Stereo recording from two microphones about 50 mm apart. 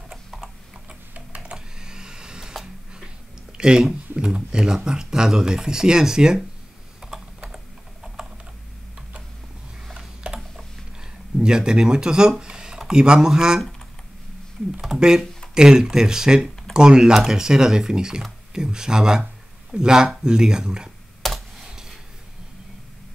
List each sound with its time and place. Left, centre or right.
0.1 s tick-tock: centre
1.1 s a sound: right
1.8 s power windows: centre
3.5 s speech: centre
7.0 s typing: centre
9.9 s a sound: centre
15.0 s speech: centre
21.2 s computer keyboard: centre
21.6 s a sound: centre